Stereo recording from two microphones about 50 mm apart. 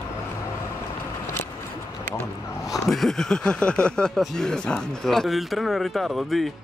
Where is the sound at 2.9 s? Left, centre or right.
Centre.